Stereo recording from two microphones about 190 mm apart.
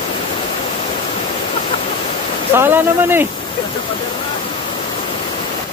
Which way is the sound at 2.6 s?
10° right (ahead or behind).